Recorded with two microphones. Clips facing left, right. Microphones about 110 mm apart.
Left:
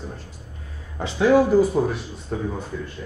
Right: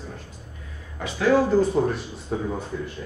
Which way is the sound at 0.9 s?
25° left (ahead or behind).